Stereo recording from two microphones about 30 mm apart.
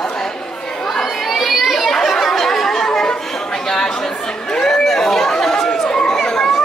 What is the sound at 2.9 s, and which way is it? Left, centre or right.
Chatter, left.